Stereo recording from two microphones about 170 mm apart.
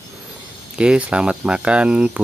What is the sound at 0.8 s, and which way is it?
Speech, 5° right (ahead or behind).